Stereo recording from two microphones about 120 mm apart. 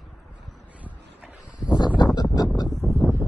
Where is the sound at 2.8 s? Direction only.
25° left (ahead or behind).